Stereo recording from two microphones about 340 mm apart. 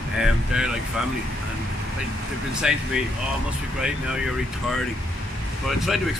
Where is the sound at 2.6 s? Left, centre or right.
Centre.